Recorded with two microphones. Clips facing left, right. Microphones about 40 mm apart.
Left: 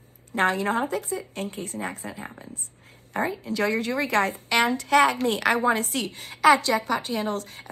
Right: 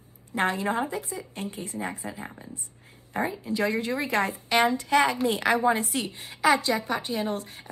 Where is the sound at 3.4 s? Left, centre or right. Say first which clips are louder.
Left 1 dB; left.